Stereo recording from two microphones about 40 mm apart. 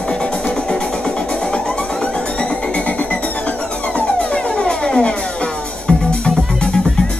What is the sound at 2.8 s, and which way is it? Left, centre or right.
Music, left.